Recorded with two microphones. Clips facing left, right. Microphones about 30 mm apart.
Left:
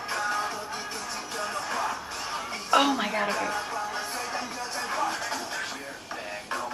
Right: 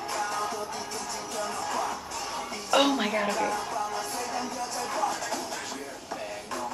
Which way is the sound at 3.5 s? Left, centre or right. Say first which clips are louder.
Right 1 dB; left.